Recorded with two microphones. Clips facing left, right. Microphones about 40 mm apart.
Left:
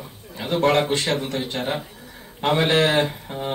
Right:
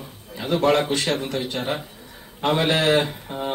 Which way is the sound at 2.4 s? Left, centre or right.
Centre.